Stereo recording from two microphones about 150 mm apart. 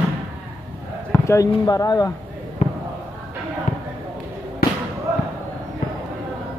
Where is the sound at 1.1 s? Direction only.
20° left (ahead or behind).